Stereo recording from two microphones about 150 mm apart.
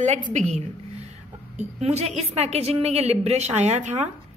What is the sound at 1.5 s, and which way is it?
A woman's voice, 45° right (ahead or behind).